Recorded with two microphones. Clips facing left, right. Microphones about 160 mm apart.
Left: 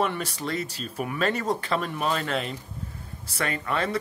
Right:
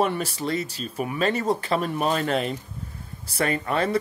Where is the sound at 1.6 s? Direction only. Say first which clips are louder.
Right 3 dB; 40° right (ahead or behind).